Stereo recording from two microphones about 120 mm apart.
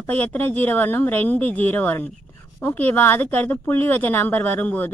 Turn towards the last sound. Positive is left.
turn(degrees=15)  # may be behind; listen again after turning